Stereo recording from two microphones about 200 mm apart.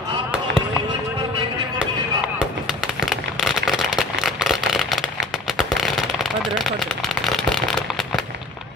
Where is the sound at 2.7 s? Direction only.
5° right (ahead or behind).